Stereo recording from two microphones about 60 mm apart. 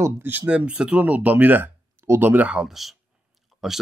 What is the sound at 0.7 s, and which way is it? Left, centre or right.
Speech, centre.